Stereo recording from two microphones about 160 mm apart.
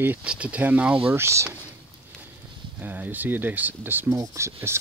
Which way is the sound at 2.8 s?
10° right (ahead or behind).